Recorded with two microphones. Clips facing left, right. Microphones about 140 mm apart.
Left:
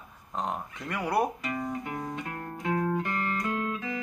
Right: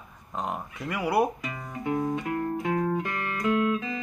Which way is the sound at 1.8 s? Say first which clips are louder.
Right 8 dB; 25° right (ahead or behind).